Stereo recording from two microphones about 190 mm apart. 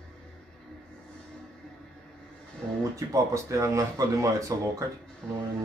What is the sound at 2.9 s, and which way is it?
Speech, 15° right (ahead or behind).